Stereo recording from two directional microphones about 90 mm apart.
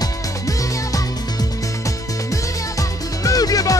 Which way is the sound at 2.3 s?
40° left (ahead or behind).